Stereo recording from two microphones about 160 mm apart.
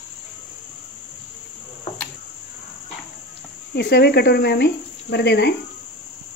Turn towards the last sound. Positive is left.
turn(degrees=90)